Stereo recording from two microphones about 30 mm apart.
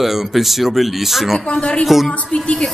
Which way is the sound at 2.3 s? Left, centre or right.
Left.